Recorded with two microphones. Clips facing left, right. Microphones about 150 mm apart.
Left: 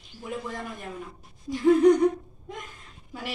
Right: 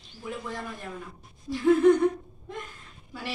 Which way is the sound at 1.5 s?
15° left (ahead or behind).